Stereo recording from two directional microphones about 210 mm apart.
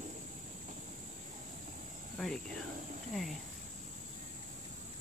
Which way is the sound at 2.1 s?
5° left (ahead or behind).